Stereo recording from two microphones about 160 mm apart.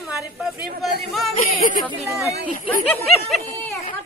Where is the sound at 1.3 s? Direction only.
55° left (ahead or behind).